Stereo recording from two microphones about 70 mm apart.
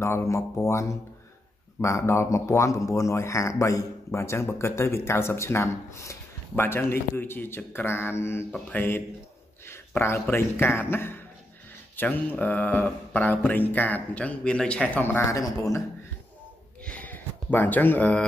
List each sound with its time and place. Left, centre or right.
0.0 s a man's voice: left
8.5 s mantra: centre
8.7 s a man's voice: left; by 14.9 s centre
15.0 s a man's voice: left
16.8 s a sound: left